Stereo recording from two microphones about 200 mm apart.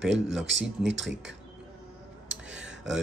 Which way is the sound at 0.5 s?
65° right (ahead or behind).